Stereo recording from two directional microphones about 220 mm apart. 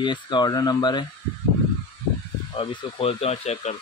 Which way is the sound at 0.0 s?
20° left (ahead or behind).